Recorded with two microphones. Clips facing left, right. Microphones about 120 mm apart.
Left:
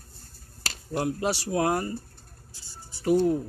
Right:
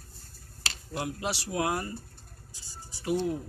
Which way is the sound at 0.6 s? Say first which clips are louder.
Left 6 dB; 40° left (ahead or behind).